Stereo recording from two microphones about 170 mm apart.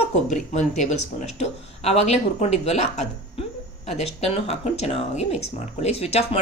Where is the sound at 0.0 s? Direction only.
45° left (ahead or behind).